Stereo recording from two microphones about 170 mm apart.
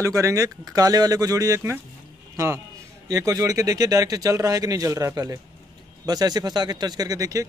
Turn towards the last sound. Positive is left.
turn(degrees=-20)  # may be behind; listen again after turning